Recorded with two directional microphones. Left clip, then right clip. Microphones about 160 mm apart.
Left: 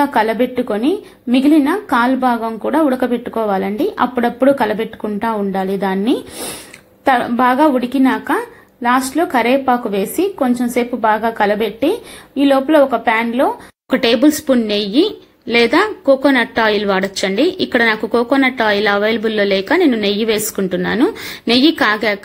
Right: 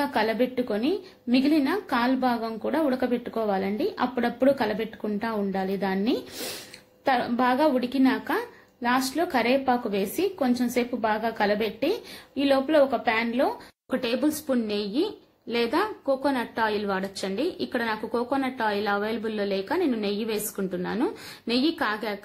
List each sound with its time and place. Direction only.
0.0 s a woman's voice: 5° left (ahead or behind)
14.0 s a woman's voice: 20° left (ahead or behind)